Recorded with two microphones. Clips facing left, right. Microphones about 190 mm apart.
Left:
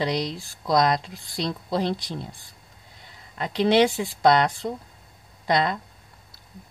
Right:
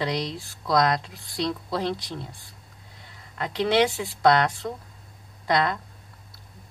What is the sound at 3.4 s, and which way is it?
Speech, 20° left (ahead or behind).